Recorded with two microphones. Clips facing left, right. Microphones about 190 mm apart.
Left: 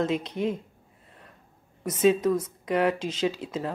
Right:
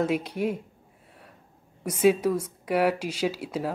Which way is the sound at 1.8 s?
10° right (ahead or behind).